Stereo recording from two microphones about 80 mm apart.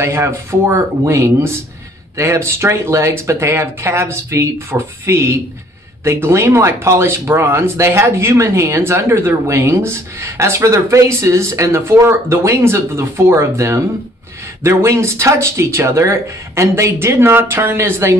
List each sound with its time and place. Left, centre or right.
0.0 s speech: right